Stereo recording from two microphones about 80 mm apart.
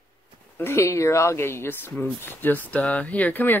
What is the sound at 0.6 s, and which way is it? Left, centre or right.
Speech, left.